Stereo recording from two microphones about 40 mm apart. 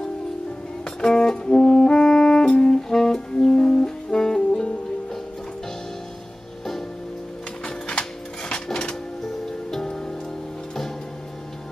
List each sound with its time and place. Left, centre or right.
0.8 s music: centre
7.6 s a sound: left
9.5 s music: centre